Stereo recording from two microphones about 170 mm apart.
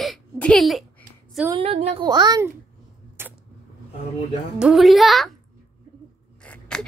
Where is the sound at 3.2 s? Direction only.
15° right (ahead or behind).